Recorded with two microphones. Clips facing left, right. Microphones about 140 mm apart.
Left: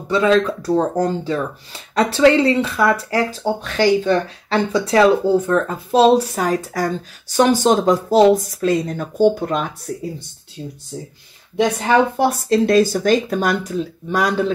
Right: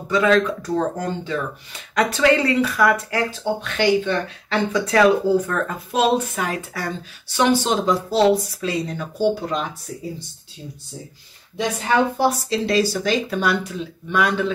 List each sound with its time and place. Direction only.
0.1 s speech: 30° left (ahead or behind); by 9.7 s 50° left (ahead or behind)
12.2 s speech: 50° left (ahead or behind)